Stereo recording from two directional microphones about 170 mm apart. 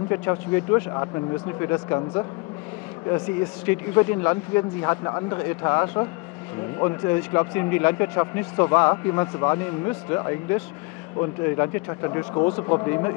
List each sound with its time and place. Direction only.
0.1 s speech: 15° left (ahead or behind)
3.6 s a man's voice: 15° left (ahead or behind)